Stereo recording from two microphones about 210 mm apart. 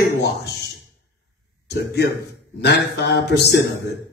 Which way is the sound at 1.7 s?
50° left (ahead or behind).